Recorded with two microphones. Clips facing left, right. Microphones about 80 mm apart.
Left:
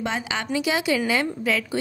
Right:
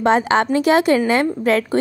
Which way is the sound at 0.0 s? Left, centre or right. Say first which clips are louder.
Right 12 dB; right.